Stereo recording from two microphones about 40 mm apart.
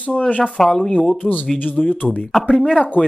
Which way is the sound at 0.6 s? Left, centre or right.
Centre.